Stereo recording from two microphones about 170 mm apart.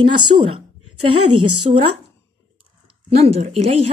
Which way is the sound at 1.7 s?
40° right (ahead or behind).